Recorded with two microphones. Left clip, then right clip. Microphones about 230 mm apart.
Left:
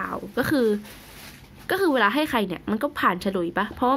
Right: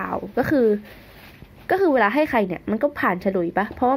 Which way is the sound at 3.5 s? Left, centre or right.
Centre.